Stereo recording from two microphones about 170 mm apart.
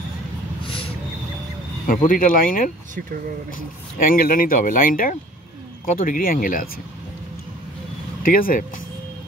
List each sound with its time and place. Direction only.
1.9 s speech: 55° left (ahead or behind)
8.2 s speech: 60° left (ahead or behind)